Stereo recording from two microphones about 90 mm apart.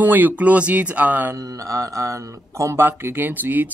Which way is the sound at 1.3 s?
40° right (ahead or behind).